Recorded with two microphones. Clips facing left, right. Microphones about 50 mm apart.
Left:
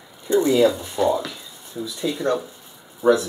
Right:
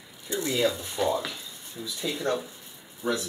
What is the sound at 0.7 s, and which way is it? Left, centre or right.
Speech, centre.